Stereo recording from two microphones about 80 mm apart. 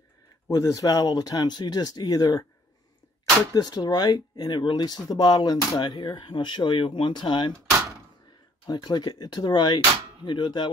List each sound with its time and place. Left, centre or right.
0.5 s speech: left
3.5 s speech: left
8.6 s speech: left